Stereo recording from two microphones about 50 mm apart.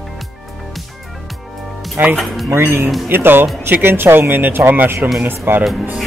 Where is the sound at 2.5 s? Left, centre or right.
Right.